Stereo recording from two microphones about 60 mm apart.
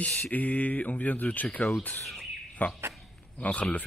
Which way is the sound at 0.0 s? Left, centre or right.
Left.